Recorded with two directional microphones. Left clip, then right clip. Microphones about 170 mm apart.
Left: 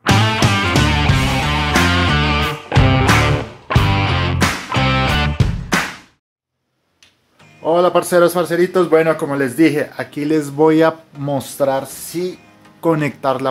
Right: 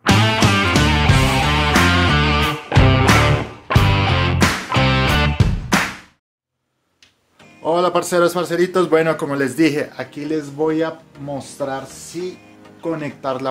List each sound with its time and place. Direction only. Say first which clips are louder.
0.0 s music: even; centre (ahead or behind)
7.6 s a man's voice: left 3 dB; 5° left (ahead or behind)
9.9 s speech: left 5 dB; 30° left (ahead or behind); by 11.8 s 65° left (ahead or behind)
12.8 s speech: left 8 dB; 60° left (ahead or behind)
13.2 s speech: left 5 dB; 35° left (ahead or behind)